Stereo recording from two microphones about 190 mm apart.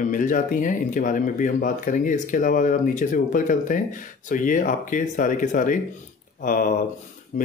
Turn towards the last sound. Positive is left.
turn(degrees=45)  # may be behind; listen again after turning